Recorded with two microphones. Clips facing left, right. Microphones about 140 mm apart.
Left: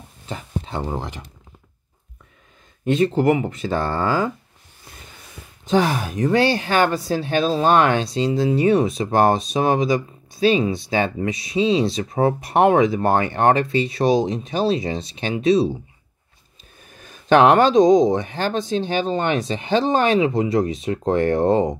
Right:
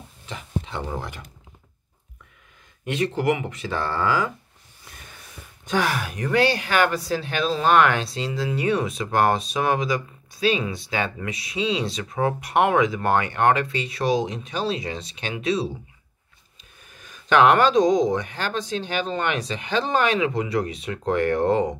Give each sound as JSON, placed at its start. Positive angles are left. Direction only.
{"t": 0.3, "sound": "speech", "side_deg": 35}
{"t": 2.8, "sound": "speech", "side_deg": 30}
{"t": 5.7, "sound": "speech", "side_deg": 25}
{"t": 17.0, "sound": "speech", "side_deg": 35}